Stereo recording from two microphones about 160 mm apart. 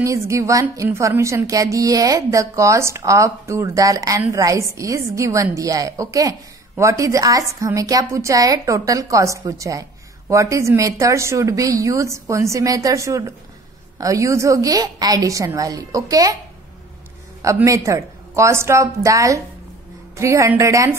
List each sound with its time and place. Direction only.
0.0 s a woman's voice: 20° right (ahead or behind)
17.4 s a woman's voice: 20° right (ahead or behind)